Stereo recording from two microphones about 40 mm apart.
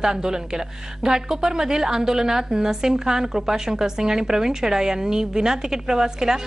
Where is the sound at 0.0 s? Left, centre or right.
Centre.